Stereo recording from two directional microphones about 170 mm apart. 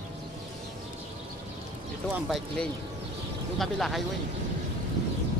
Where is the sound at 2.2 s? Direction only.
Centre (ahead or behind).